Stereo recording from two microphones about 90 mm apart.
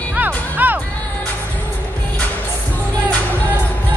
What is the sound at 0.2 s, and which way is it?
Music, 20° right (ahead or behind).